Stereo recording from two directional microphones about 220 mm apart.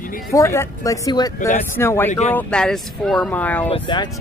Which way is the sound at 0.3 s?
15° left (ahead or behind).